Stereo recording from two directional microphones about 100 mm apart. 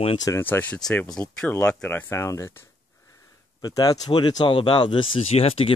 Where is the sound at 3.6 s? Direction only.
40° left (ahead or behind).